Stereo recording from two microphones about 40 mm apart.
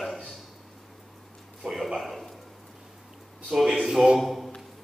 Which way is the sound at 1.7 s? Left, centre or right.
Centre.